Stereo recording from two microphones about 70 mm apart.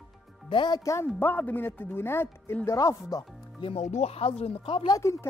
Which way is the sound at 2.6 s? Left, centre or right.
Left.